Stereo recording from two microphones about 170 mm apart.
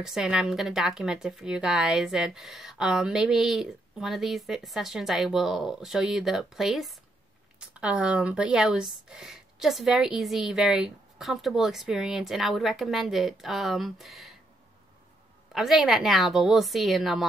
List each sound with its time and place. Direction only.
0.0 s a woman's voice: 5° right (ahead or behind)
15.5 s a woman's voice: centre (ahead or behind)